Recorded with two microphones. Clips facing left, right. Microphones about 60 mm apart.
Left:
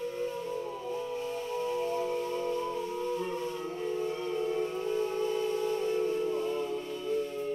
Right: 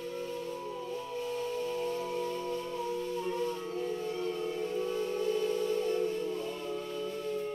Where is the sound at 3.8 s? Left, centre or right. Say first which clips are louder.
Left 2 dB; centre.